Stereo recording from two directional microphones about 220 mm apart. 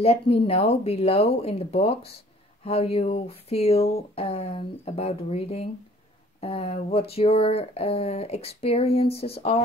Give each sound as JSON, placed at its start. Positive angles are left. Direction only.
{"t": 0.0, "sound": "speech", "side_deg": 25}